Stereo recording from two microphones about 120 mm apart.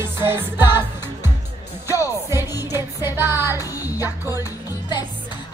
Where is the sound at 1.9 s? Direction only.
25° left (ahead or behind).